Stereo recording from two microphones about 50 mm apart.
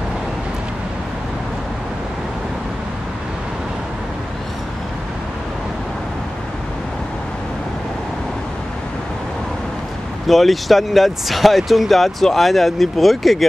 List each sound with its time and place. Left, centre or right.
10.2 s speech: centre